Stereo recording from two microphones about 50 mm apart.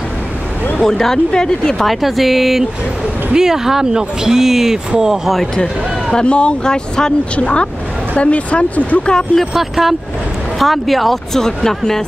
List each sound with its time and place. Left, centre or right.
0.8 s speech: centre
1.9 s speech: centre
6.1 s speech: left
7.3 s speech: left
9.1 s speech: centre
9.5 s speech: centre